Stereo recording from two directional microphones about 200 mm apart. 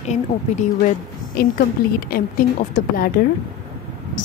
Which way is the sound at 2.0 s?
45° left (ahead or behind).